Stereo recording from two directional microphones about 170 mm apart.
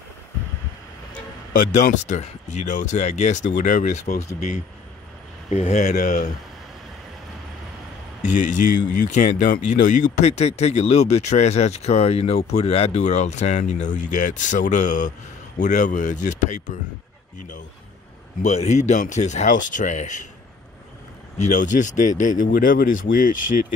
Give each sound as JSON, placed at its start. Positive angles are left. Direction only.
{"t": 1.5, "sound": "speech", "side_deg": 45}
{"t": 8.2, "sound": "speech", "side_deg": 50}
{"t": 18.4, "sound": "speech", "side_deg": 40}
{"t": 21.4, "sound": "speech", "side_deg": 45}